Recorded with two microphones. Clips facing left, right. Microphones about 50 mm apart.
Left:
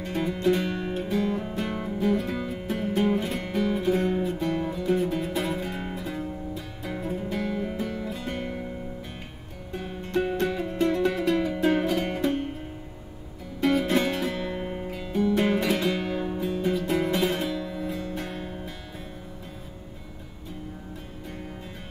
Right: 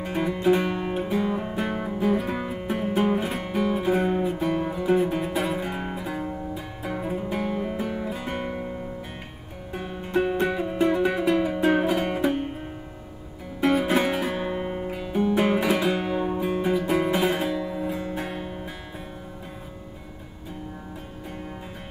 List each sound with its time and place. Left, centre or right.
0.0 s music: centre
9.7 s music: centre
13.6 s music: centre
17.6 s music: right